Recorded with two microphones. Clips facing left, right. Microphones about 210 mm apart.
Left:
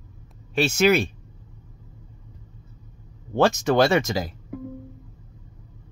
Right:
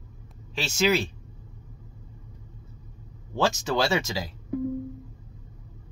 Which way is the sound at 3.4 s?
60° left (ahead or behind).